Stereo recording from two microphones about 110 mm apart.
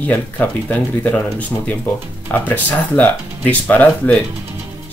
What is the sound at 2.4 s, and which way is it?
Speech, 15° left (ahead or behind).